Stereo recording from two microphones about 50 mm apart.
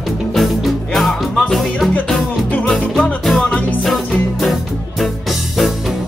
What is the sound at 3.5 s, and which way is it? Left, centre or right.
Music, left.